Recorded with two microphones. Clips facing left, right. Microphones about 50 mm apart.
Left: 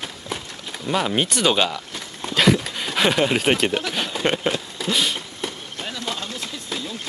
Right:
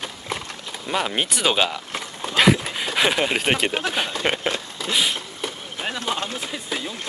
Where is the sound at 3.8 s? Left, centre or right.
Centre.